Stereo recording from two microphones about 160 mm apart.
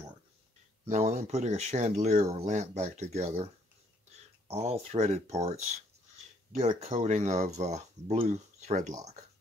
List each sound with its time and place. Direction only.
0.8 s speech: 45° right (ahead or behind)
4.5 s speech: 40° right (ahead or behind)
6.5 s speech: 50° right (ahead or behind)